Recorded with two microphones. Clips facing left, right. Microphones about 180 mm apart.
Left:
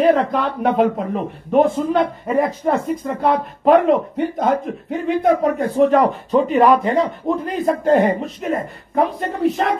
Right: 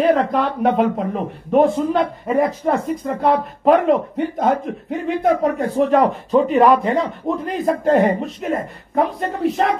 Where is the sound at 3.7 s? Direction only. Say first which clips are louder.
Left 1 dB; 40° left (ahead or behind).